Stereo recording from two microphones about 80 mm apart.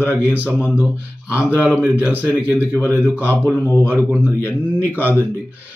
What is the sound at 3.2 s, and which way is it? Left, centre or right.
Speech, left.